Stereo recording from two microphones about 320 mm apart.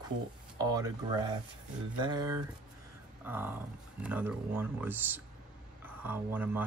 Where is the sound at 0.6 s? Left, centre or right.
Centre.